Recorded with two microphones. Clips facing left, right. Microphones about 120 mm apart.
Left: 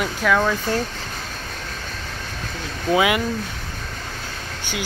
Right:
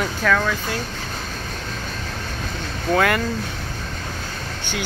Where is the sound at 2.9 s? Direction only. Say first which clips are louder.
Even; 10° left (ahead or behind).